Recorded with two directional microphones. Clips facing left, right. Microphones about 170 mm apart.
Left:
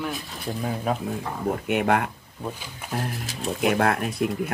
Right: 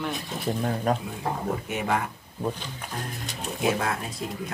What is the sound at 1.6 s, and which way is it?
Speech, 60° left (ahead or behind).